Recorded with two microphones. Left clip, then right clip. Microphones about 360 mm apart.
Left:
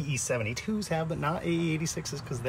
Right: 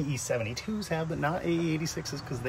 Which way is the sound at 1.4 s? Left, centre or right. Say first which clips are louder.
Right 1 dB; left.